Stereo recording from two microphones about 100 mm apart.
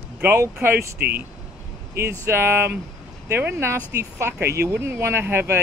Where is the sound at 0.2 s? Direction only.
25° right (ahead or behind).